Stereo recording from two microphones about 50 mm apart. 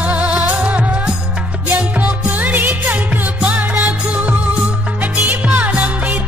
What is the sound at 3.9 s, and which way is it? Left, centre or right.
Music, right.